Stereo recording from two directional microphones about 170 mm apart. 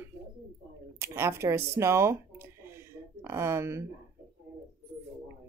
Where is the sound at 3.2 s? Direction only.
15° right (ahead or behind).